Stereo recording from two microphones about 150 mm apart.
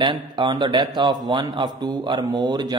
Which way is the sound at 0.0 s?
30° right (ahead or behind).